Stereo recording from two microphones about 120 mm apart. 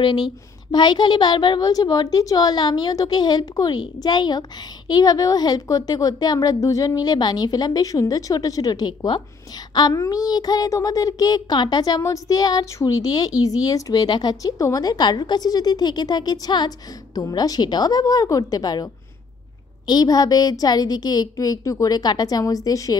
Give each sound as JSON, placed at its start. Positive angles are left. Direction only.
{"t": 0.7, "sound": "a woman's voice", "side_deg": 40}
{"t": 19.9, "sound": "a woman's voice", "side_deg": 35}